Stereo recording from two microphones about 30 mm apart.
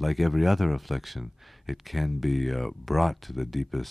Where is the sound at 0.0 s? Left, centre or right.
Centre.